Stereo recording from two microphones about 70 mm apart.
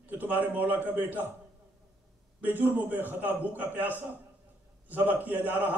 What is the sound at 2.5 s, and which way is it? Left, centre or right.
A man's voice, right.